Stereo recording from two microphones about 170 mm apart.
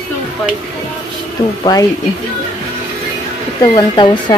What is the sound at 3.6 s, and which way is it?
Speech, 25° left (ahead or behind).